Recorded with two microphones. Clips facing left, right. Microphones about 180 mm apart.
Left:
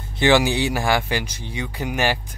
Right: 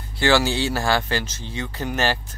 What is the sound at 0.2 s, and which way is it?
Speech, 15° left (ahead or behind).